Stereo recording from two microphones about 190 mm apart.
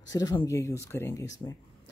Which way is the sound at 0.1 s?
20° left (ahead or behind).